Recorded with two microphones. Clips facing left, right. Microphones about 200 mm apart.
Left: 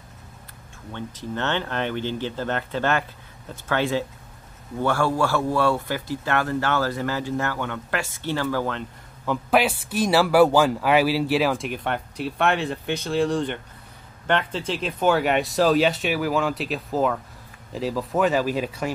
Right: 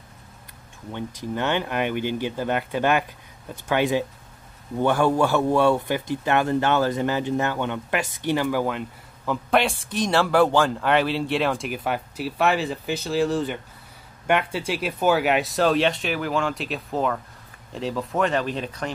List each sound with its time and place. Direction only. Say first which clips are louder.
0.9 s a man's voice: right 2 dB; 15° right (ahead or behind)
9.2 s a man's voice: left 1 dB; centre (ahead or behind)